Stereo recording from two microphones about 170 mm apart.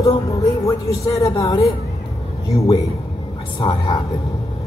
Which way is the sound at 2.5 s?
35° left (ahead or behind).